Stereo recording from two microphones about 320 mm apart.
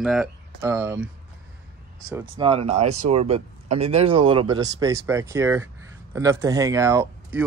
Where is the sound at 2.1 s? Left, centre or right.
Centre.